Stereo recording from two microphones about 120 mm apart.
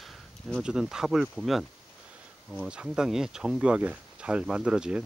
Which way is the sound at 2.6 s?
5° right (ahead or behind).